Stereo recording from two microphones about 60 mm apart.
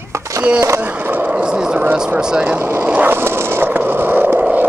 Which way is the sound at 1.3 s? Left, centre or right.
Centre.